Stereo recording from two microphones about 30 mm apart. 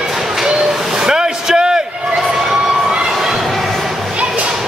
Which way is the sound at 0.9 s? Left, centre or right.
Centre.